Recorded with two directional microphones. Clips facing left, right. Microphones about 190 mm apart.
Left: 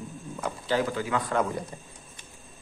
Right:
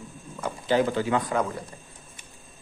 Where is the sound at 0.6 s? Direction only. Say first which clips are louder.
Right 5 dB; 20° right (ahead or behind).